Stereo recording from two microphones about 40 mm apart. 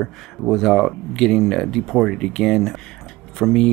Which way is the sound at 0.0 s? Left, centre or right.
Centre.